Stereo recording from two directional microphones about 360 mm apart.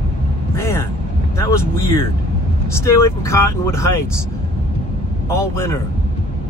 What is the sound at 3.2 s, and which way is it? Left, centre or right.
Speech, centre.